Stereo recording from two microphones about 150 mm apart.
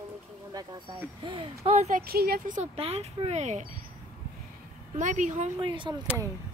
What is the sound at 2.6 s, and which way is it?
Speech, 45° right (ahead or behind).